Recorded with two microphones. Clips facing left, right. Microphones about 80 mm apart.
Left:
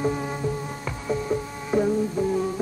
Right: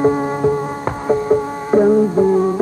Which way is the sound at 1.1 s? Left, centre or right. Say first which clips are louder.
Right 11 dB; right.